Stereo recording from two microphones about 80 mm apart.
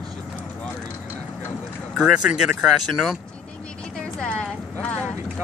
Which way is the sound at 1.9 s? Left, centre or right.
Centre.